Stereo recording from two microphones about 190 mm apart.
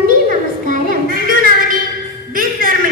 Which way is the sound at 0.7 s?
45° right (ahead or behind).